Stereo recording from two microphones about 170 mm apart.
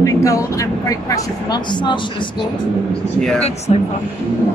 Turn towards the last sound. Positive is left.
turn(degrees=40)  # may be behind; listen again after turning